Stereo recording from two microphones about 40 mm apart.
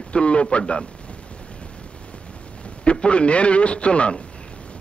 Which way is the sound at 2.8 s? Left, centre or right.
Left.